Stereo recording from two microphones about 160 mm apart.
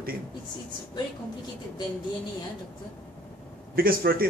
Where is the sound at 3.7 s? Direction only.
65° right (ahead or behind).